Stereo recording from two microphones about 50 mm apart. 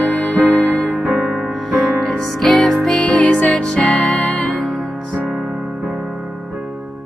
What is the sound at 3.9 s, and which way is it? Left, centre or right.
Music, centre.